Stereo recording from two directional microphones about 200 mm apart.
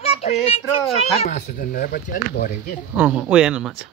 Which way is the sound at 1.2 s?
40° left (ahead or behind).